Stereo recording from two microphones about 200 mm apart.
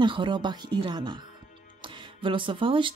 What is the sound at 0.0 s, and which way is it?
Speech, 25° right (ahead or behind).